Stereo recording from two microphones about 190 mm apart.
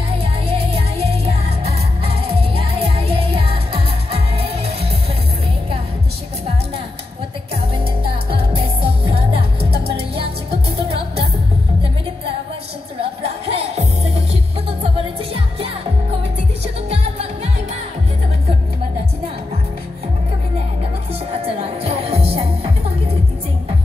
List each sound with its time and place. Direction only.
0.2 s music: 30° right (ahead or behind)
7.6 s music: 30° right (ahead or behind)
13.5 s music: 30° right (ahead or behind)
16.6 s music: 35° right (ahead or behind)
21.5 s music: 30° right (ahead or behind)